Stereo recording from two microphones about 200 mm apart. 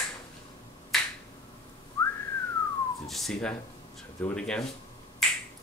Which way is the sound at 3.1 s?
Centre (ahead or behind).